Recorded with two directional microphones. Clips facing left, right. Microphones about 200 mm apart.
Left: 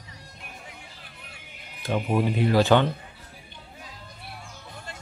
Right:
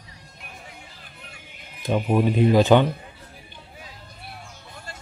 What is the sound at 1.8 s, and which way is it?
Speech, 15° right (ahead or behind).